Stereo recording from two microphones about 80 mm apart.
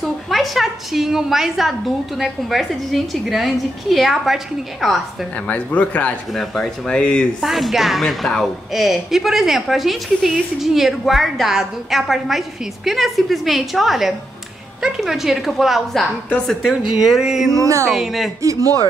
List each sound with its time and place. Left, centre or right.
0.0 s a woman's voice: centre
5.5 s speech: centre
6.3 s speech: centre
7.4 s a woman's voice: centre
17.5 s speech: right
17.9 s a woman's voice: centre
18.4 s speech: right